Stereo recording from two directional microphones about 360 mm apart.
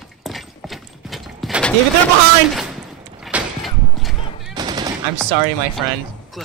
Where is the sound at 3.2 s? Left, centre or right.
Centre.